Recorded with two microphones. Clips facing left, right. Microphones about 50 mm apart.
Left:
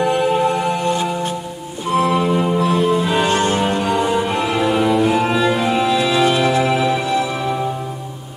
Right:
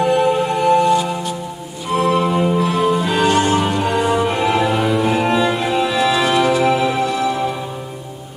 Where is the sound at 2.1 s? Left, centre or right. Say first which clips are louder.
Right 1 dB; centre.